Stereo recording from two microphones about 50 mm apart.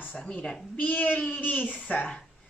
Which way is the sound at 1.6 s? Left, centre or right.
Centre.